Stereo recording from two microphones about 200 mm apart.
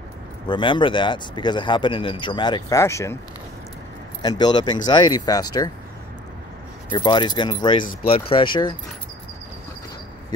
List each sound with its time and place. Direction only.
0.5 s speech: 25° left (ahead or behind)
4.2 s speech: 20° left (ahead or behind)
6.9 s speech: 20° left (ahead or behind)